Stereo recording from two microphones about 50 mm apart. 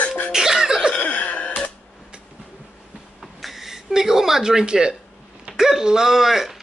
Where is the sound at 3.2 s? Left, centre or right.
Centre.